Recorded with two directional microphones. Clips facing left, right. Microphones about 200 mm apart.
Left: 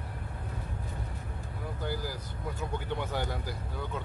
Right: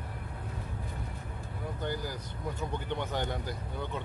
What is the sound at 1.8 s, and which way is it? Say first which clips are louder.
Speech: even; 5° left (ahead or behind).